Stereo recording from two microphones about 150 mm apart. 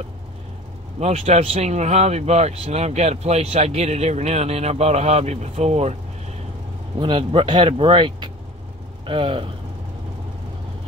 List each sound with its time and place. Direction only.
0.9 s speech: 45° right (ahead or behind)
7.0 s speech: 35° right (ahead or behind)